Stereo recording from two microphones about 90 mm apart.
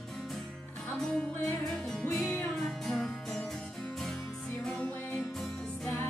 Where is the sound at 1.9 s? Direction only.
5° left (ahead or behind).